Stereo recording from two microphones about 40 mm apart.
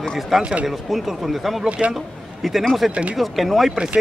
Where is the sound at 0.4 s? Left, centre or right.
Right.